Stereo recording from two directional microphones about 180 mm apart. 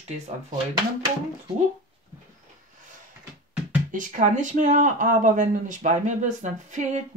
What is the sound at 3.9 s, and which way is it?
Speech, 45° right (ahead or behind).